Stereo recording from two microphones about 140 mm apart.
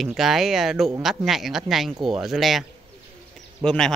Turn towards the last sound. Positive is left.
turn(degrees=5)  # may be behind; listen again after turning